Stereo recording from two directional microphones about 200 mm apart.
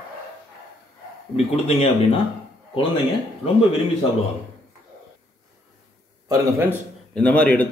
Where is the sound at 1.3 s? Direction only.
30° left (ahead or behind).